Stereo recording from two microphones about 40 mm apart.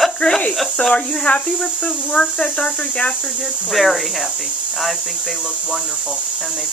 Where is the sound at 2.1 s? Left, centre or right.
Left.